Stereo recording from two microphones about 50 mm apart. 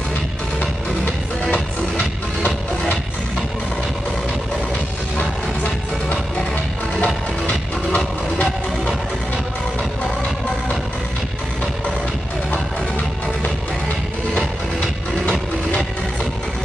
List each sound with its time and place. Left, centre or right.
7.0 s music: left
12.4 s music: left